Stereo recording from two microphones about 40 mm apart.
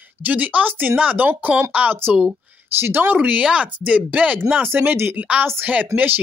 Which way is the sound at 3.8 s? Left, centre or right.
Right.